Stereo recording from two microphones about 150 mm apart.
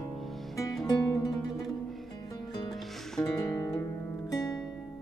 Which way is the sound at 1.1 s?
25° left (ahead or behind).